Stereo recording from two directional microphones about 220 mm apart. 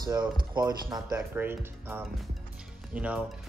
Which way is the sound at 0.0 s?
20° right (ahead or behind).